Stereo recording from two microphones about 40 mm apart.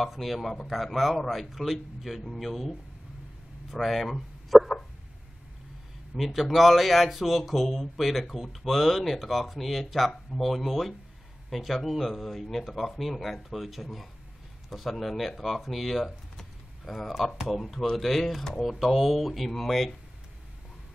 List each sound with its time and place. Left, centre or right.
0.0 s speech: centre
3.7 s speech: centre
6.1 s speech: centre